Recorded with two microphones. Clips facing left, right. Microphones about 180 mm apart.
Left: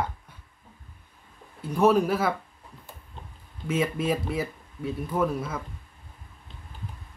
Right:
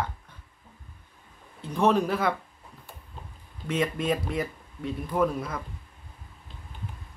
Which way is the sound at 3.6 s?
5° left (ahead or behind).